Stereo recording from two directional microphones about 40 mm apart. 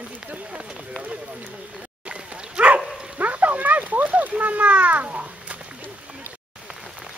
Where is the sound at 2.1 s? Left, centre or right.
Right.